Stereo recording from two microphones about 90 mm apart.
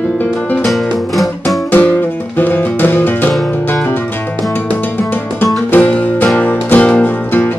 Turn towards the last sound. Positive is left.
turn(degrees=20)  # may be behind; listen again after turning